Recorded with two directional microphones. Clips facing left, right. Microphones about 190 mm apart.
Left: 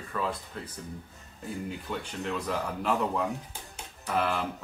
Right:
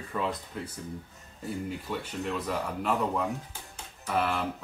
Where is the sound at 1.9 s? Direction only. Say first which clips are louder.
Even; 5° right (ahead or behind).